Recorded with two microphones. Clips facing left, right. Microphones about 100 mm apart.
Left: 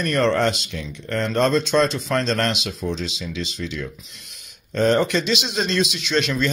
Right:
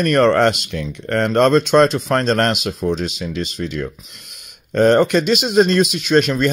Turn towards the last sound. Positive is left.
turn(degrees=-45)  # may be behind; listen again after turning